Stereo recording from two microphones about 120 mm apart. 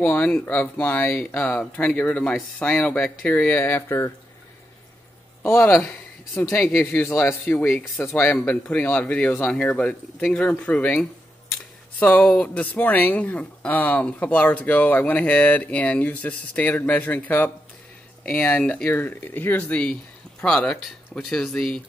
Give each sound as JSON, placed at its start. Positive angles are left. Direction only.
{"t": 0.0, "sound": "speech", "side_deg": 15}
{"t": 5.4, "sound": "speech", "side_deg": 20}
{"t": 7.9, "sound": "speech", "side_deg": 0}